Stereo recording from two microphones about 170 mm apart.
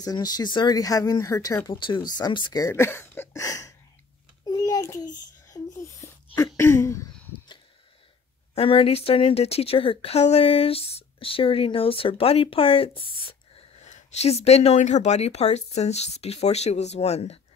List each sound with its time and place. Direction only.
0.0 s speech: 25° left (ahead or behind)
4.5 s a sound: 20° left (ahead or behind)
8.5 s speech: 35° left (ahead or behind)